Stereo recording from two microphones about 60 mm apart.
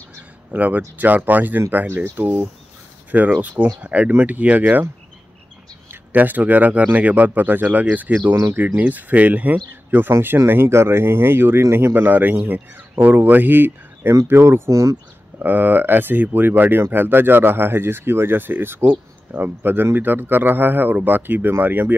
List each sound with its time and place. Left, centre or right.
0.5 s speech: right
5.9 s speech: right
14.7 s speech: right
15.3 s speech: right